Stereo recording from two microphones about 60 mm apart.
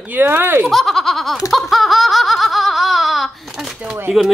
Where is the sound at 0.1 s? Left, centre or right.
Right.